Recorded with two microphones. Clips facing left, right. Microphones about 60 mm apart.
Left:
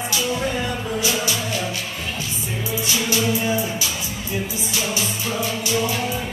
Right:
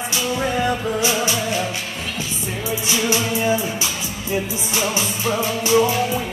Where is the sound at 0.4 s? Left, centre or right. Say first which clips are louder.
Right 4 dB; right.